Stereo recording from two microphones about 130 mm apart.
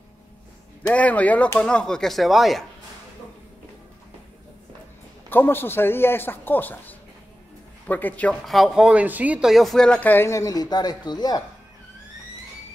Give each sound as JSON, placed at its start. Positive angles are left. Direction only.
{"t": 0.9, "sound": "speech", "side_deg": 10}
{"t": 5.3, "sound": "speech", "side_deg": 15}
{"t": 8.5, "sound": "speech", "side_deg": 0}